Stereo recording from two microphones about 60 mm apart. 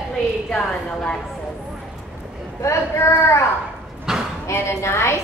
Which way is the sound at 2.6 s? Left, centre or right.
Left.